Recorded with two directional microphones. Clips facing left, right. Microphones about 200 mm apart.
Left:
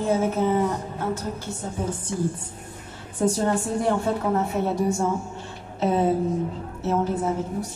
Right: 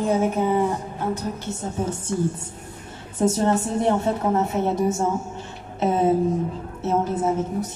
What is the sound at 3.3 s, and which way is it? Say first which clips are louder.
A woman's voice: right 2 dB; 20° right (ahead or behind).